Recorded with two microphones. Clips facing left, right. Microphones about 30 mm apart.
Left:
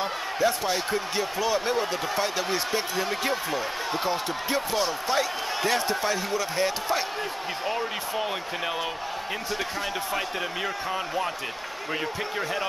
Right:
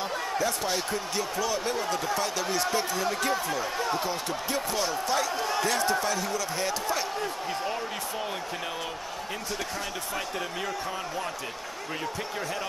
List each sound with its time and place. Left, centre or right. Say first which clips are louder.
0.0 s speech: left 3 dB; left
10.1 s speech: left 3 dB; left